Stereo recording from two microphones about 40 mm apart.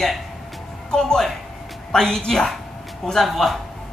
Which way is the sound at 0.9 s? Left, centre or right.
Centre.